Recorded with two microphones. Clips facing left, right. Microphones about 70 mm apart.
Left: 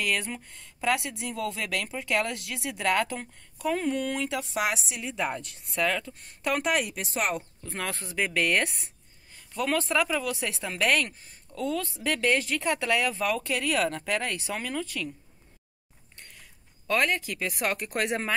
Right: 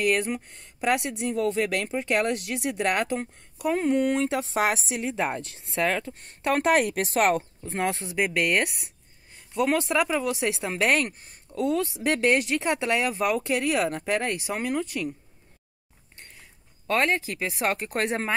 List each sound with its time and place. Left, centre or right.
0.1 s a woman's voice: right
7.6 s speech: right
16.9 s speech: right